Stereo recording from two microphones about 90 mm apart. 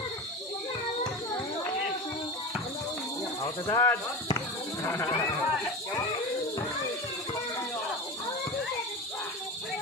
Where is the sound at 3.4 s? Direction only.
35° left (ahead or behind).